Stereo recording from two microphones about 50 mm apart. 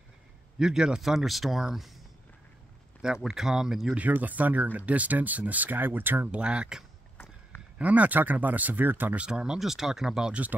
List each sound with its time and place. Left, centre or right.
0.6 s a man's voice: centre
3.3 s speech: centre
3.9 s speech: right
6.3 s speech: right
7.8 s speech: right
9.3 s speech: centre